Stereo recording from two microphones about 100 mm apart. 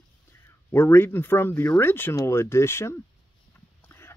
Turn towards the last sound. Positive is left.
turn(degrees=25)  # may be behind; listen again after turning